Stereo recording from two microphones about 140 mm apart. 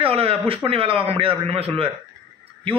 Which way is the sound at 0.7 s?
45° right (ahead or behind).